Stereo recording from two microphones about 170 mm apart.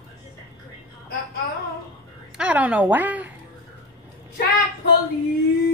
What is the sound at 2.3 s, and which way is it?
A woman's voice, 5° right (ahead or behind).